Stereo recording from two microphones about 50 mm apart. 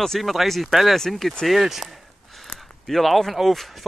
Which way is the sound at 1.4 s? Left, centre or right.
Centre.